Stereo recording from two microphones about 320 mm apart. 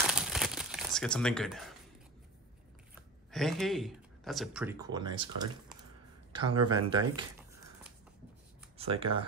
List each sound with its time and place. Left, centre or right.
0.0 s crumpling: centre
3.3 s speech: centre
8.7 s speech: centre